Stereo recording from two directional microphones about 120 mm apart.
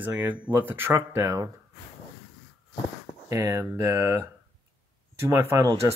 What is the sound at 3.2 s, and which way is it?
Speech, 25° right (ahead or behind).